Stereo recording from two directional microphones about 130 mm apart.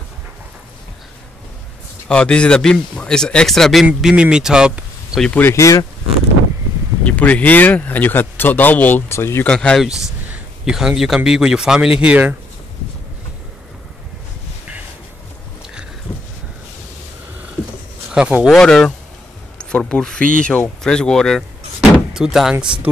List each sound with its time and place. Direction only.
2.0 s speech: 10° left (ahead or behind)
5.2 s speech: 15° left (ahead or behind)
7.1 s speech: 10° left (ahead or behind)
9.5 s speech: 5° left (ahead or behind)
9.8 s speech: 5° right (ahead or behind)
18.1 s speech: 5° right (ahead or behind)
18.5 s speech: 5° left (ahead or behind)
20.2 s speech: 90° right
20.4 s speech: 10° left (ahead or behind)